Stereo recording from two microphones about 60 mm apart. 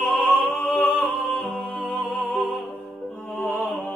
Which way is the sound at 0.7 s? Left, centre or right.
Centre.